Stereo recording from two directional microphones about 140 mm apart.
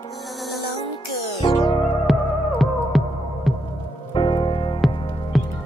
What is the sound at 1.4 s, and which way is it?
Music, 35° left (ahead or behind).